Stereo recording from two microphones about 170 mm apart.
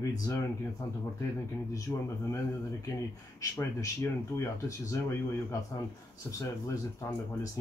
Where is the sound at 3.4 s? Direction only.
20° left (ahead or behind).